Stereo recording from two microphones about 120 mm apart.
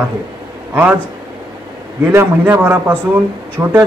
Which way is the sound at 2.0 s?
20° right (ahead or behind).